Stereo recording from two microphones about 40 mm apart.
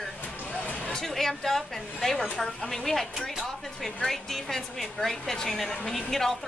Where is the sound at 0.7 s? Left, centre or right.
Left.